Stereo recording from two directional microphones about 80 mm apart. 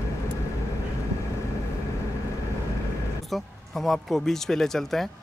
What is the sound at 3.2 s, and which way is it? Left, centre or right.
Speech, centre.